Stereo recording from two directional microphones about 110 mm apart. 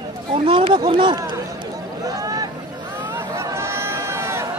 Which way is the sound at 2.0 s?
35° right (ahead or behind).